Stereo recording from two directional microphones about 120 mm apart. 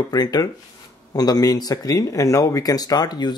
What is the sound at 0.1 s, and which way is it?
Speech, 35° left (ahead or behind).